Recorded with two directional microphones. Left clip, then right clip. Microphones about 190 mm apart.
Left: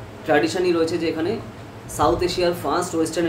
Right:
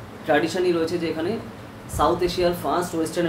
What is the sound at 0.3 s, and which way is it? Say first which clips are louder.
Speech: left 2 dB; 10° left (ahead or behind).